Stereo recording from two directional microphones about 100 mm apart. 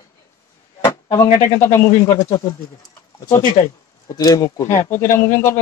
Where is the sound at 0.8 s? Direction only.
40° left (ahead or behind).